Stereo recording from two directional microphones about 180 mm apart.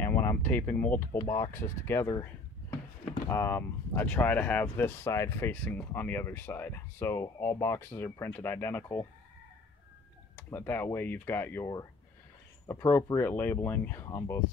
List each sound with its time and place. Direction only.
0.0 s speech: 10° left (ahead or behind)
3.3 s speech: 15° left (ahead or behind)
10.3 s speech: 10° left (ahead or behind)